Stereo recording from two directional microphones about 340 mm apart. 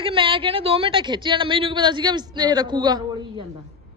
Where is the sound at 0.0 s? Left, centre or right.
Centre.